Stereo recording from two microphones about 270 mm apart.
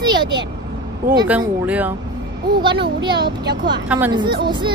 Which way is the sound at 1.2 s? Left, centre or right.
Centre.